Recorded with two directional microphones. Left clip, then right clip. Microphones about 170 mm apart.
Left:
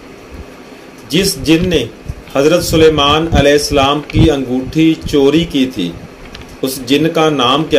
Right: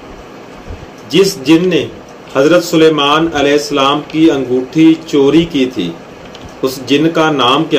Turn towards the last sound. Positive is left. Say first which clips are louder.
# right 1 dB
turn(degrees=55)  # may be behind; listen again after turning